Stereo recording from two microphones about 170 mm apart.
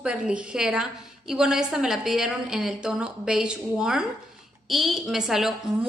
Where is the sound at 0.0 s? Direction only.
5° right (ahead or behind).